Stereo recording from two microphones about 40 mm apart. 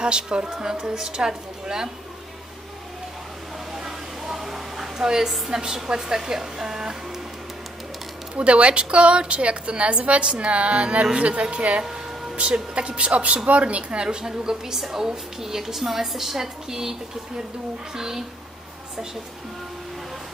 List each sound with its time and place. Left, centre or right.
0.0 s a woman's voice: right
3.7 s a sound: centre
5.5 s a woman's voice: centre
8.4 s a woman's voice: right
14.0 s a woman's voice: centre
17.9 s a woman's voice: centre